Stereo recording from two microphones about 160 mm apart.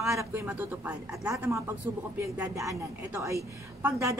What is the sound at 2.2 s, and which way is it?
A woman's voice, 20° right (ahead or behind).